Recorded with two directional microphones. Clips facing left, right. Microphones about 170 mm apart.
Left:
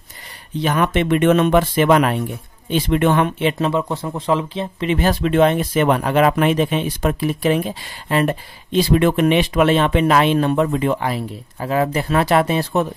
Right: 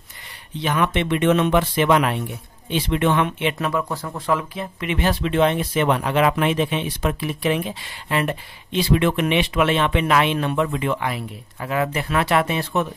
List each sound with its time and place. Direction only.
0.6 s speech: 45° left (ahead or behind)
3.5 s speech: 25° left (ahead or behind)